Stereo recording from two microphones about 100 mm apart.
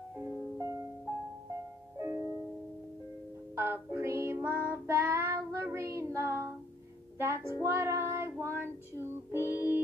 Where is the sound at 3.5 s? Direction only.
25° right (ahead or behind).